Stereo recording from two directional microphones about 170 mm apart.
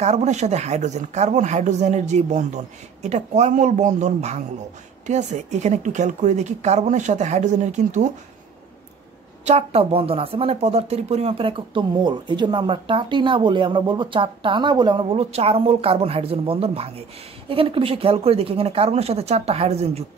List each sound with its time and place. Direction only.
0.0 s speech: 40° right (ahead or behind)
9.4 s speech: 40° right (ahead or behind)